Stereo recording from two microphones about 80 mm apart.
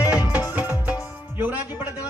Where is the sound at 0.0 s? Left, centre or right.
Left.